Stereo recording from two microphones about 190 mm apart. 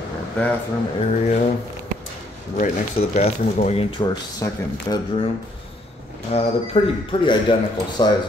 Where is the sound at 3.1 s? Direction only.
35° left (ahead or behind).